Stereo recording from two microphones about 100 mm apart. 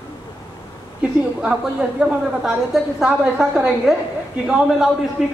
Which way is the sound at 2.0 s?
5° right (ahead or behind).